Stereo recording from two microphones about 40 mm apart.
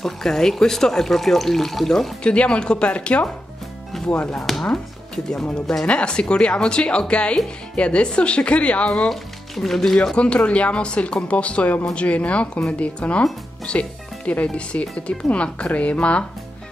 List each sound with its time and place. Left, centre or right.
0.0 s speech: centre
2.2 s speech: left
4.6 s speech: centre
5.9 s speech: left
9.1 s speech: centre
10.1 s speech: left